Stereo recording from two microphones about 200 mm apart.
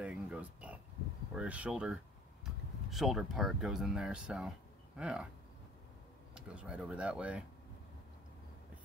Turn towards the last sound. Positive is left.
turn(degrees=-5)  # may be behind; listen again after turning